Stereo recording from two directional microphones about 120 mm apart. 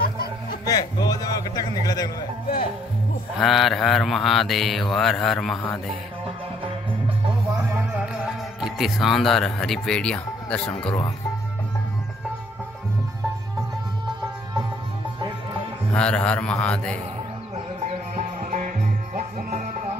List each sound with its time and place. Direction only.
0.7 s a man's voice: 30° left (ahead or behind)
3.3 s speech: centre (ahead or behind)
7.7 s music: 15° right (ahead or behind)
8.5 s speech: 5° right (ahead or behind); by 11.1 s 10° left (ahead or behind)
15.9 s a man's voice: 10° left (ahead or behind)
18.1 s music: 80° right